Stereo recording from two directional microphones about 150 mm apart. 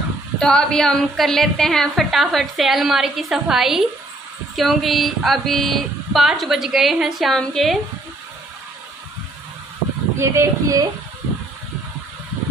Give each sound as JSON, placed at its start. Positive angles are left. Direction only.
{"t": 0.4, "sound": "a woman's voice", "side_deg": 5}
{"t": 10.1, "sound": "speech", "side_deg": -15}